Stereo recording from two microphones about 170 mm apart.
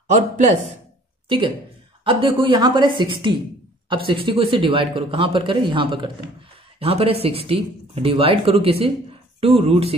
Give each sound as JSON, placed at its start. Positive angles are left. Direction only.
{"t": 0.1, "sound": "speech", "side_deg": -45}
{"t": 2.0, "sound": "speech", "side_deg": -30}